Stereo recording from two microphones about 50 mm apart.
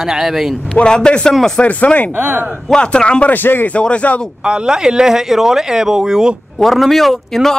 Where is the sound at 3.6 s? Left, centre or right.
Left.